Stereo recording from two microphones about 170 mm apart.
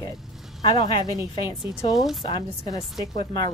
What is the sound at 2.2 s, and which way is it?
Speech, 25° left (ahead or behind).